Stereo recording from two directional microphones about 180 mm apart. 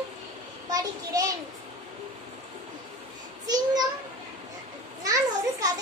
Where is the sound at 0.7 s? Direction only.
20° right (ahead or behind).